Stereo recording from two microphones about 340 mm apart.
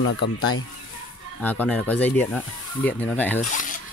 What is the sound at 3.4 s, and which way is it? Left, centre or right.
Speech, left.